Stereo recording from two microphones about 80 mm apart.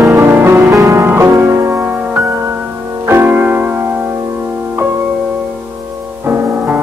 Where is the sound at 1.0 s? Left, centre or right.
Right.